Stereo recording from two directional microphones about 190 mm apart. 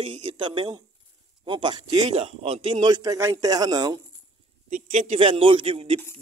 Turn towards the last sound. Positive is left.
turn(degrees=-30)  # may be behind; listen again after turning